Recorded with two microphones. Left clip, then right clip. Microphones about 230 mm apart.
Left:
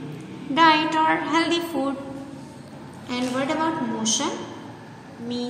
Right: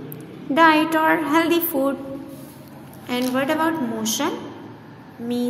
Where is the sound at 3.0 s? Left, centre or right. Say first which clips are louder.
Right 4 dB; right.